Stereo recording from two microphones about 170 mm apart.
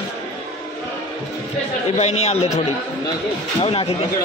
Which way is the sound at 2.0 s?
40° left (ahead or behind).